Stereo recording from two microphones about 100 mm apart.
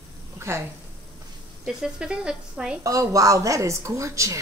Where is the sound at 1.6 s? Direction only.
5° right (ahead or behind).